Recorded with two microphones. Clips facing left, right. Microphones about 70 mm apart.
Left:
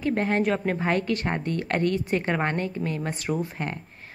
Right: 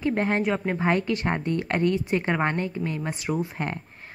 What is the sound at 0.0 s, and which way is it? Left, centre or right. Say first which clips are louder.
A woman's voice: even; right.